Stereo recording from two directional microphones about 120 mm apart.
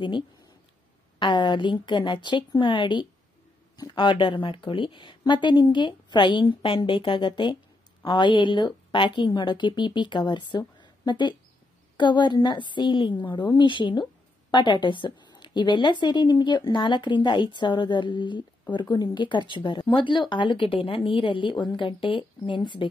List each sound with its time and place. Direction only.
1.2 s speech: 40° left (ahead or behind)
10.8 s a sound: 40° left (ahead or behind)
12.0 s speech: 40° left (ahead or behind)